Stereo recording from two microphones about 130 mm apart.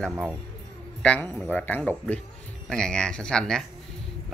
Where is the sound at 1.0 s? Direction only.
10° left (ahead or behind).